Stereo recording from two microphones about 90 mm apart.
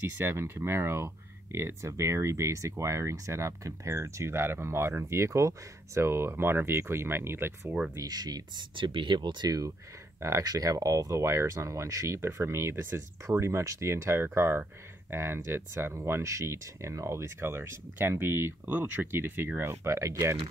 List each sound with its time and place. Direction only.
0.2 s speech: 25° right (ahead or behind)
7.9 s speech: 45° right (ahead or behind)
8.7 s speech: 65° right (ahead or behind)
10.2 s speech: 40° right (ahead or behind)